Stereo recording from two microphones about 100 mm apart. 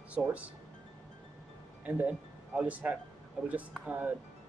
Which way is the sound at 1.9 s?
15° right (ahead or behind).